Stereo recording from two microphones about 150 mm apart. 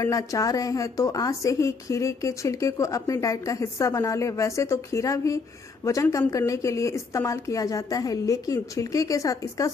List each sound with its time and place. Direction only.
0.0 s a woman's voice: 20° left (ahead or behind)